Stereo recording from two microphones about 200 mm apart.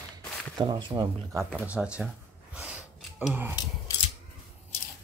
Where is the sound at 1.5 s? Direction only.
5° right (ahead or behind).